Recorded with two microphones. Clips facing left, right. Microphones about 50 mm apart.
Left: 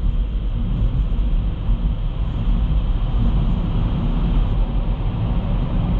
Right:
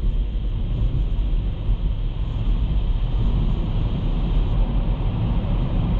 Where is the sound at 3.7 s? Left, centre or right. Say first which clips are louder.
Left 4 dB; centre.